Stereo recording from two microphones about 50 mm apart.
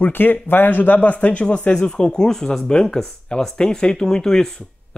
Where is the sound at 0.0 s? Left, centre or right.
Left.